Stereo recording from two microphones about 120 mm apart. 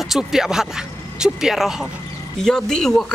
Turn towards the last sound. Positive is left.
turn(degrees=5)  # may be behind; listen again after turning